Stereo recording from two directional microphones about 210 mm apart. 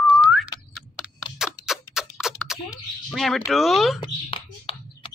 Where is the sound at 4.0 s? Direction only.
25° left (ahead or behind).